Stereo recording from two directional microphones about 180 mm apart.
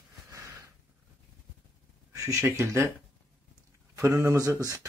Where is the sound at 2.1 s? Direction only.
15° right (ahead or behind).